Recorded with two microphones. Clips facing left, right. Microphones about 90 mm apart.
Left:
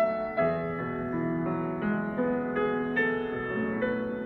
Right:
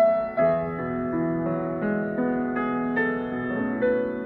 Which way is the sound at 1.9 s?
30° right (ahead or behind).